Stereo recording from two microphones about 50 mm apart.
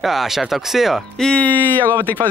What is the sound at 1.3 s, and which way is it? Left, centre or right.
Speech, left.